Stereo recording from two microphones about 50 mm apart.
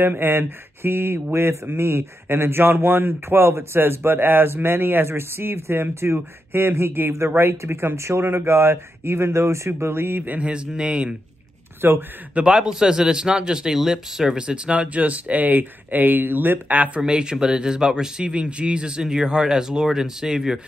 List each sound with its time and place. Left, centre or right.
0.0 s a man's voice: right
10.4 s speech: centre
11.8 s a man's voice: right
12.4 s speech: centre; by 17.0 s right
17.0 s speech: centre